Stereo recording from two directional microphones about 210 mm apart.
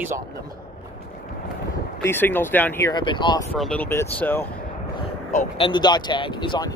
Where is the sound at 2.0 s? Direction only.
10° left (ahead or behind).